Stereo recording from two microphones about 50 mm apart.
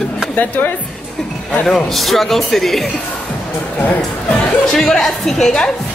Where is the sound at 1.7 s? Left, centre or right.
Centre.